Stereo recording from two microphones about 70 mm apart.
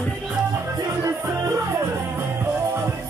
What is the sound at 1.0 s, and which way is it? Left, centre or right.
Music, right.